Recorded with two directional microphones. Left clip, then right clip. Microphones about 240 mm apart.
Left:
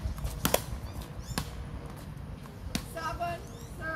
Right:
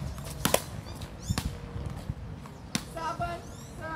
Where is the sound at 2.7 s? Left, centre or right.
Centre.